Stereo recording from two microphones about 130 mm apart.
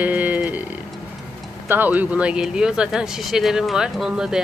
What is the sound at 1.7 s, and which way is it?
Speech, 15° right (ahead or behind).